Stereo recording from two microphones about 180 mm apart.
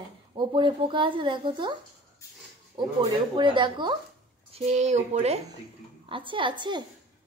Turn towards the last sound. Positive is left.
turn(degrees=-25)  # may be behind; listen again after turning